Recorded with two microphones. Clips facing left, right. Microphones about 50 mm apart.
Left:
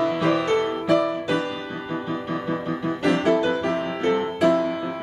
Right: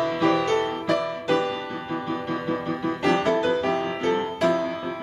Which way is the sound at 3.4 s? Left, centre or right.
Left.